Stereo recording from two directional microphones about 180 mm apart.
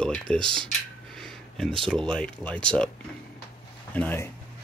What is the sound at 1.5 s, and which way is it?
Speech, centre (ahead or behind).